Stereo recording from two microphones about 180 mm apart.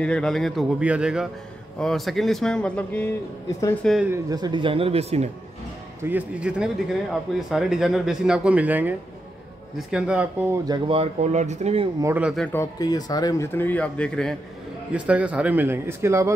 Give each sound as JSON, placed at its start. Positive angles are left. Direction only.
{"t": 0.0, "sound": "speech", "side_deg": 5}
{"t": 4.1, "sound": "speech", "side_deg": -20}
{"t": 6.0, "sound": "speech", "side_deg": -10}
{"t": 10.7, "sound": "speech", "side_deg": -30}
{"t": 12.0, "sound": "a man's voice", "side_deg": -10}
{"t": 12.5, "sound": "speech", "side_deg": 20}
{"t": 14.9, "sound": "a man's voice", "side_deg": -5}